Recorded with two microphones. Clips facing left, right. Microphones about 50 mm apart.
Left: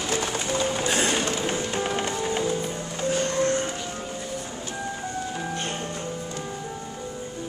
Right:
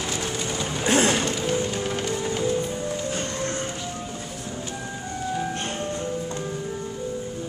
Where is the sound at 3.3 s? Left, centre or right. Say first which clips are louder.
Left 5 dB; left.